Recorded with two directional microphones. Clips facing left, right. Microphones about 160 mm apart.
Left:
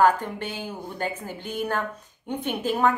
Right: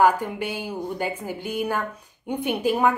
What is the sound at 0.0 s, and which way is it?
A woman's voice, 10° right (ahead or behind).